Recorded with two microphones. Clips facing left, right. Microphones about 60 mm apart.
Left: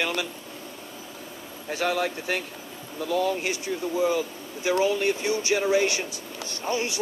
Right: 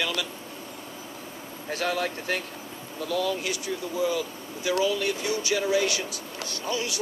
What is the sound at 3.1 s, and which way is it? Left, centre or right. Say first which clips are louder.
Speech: left 2 dB; left.